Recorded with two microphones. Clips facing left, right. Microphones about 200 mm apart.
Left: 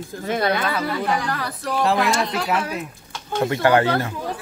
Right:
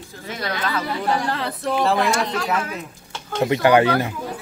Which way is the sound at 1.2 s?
25° right (ahead or behind).